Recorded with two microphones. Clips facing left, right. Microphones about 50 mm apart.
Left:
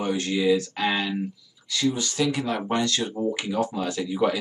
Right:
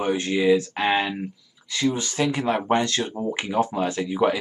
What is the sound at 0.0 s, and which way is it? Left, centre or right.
Speech, right.